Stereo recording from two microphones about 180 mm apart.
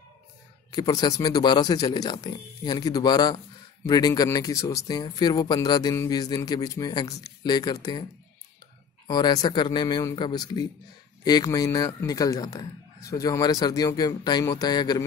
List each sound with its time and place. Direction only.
0.7 s a man's voice: 20° left (ahead or behind)
9.0 s a man's voice: 25° left (ahead or behind)